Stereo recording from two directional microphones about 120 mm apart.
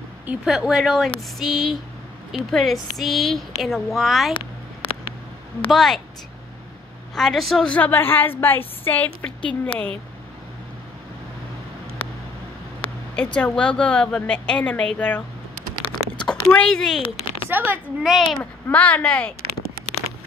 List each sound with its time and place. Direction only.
0.3 s a woman's voice: 5° right (ahead or behind)
5.7 s a woman's voice: centre (ahead or behind)
7.2 s a woman's voice: centre (ahead or behind)
13.1 s a woman's voice: 10° left (ahead or behind)
17.5 s speech: 15° right (ahead or behind)
18.0 s a woman's voice: centre (ahead or behind)
18.4 s a woman's voice: 15° left (ahead or behind)